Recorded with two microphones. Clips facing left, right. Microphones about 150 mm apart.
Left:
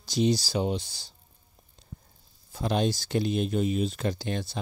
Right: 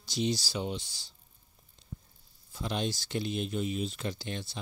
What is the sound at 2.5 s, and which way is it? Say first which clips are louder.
Speech: left 7 dB; 45° left (ahead or behind).